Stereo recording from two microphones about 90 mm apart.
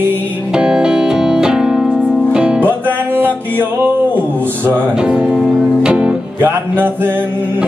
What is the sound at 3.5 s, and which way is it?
Music, 20° right (ahead or behind).